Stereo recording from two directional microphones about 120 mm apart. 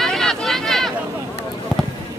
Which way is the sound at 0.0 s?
5° left (ahead or behind).